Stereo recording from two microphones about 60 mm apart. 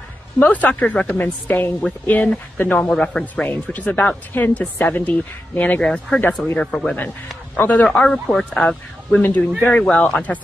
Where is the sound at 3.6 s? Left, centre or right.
Left.